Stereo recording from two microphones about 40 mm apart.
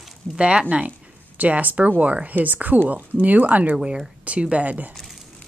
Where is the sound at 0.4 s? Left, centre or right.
Right.